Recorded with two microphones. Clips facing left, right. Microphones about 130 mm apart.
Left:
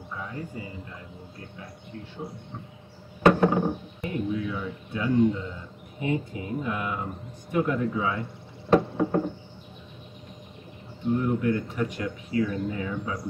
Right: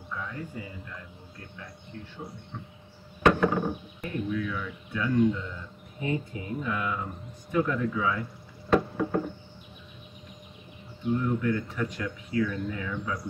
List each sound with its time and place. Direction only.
0.2 s speech: 25° left (ahead or behind)
3.2 s speech: 30° left (ahead or behind)
7.5 s knock: 25° left (ahead or behind)
11.1 s speech: 20° left (ahead or behind)